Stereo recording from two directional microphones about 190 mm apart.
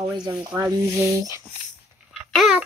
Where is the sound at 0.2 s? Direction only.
25° right (ahead or behind).